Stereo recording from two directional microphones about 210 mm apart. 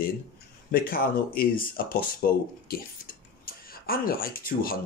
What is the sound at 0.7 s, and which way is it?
Speech, 45° left (ahead or behind).